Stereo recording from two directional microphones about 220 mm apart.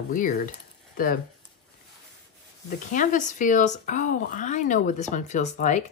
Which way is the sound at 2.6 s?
35° left (ahead or behind).